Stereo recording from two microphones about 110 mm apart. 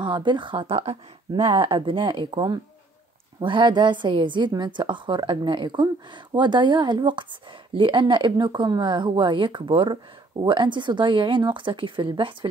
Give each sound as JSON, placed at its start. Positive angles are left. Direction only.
{"t": 0.0, "sound": "speech", "side_deg": -45}